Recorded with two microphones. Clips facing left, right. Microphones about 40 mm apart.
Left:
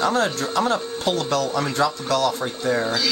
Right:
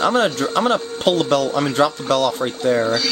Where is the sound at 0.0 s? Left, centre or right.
Right.